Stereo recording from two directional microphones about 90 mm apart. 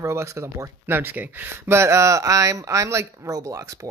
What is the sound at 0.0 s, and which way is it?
Speech, 35° right (ahead or behind).